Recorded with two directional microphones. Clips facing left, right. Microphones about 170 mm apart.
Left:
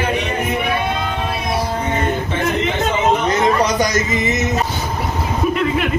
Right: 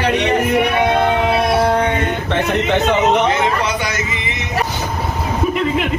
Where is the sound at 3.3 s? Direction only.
40° left (ahead or behind).